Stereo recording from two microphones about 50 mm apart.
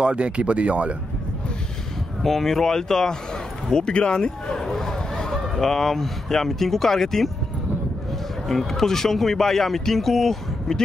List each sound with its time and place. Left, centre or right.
0.0 s speech: right
2.2 s speech: centre
8.5 s speech: centre